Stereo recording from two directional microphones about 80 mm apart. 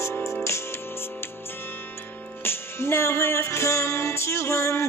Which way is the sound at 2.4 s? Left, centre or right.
Left.